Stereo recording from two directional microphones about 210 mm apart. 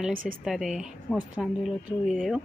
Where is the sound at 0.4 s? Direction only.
Centre (ahead or behind).